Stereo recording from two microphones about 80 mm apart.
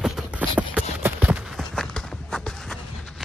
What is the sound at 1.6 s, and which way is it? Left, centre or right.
Run, centre.